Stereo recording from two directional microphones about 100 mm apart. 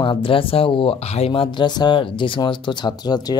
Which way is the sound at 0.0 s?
60° left (ahead or behind).